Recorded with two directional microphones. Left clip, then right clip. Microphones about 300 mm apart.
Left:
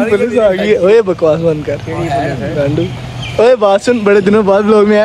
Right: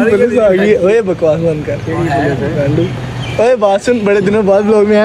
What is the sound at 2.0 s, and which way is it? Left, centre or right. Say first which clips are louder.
Speech: right 1 dB; left.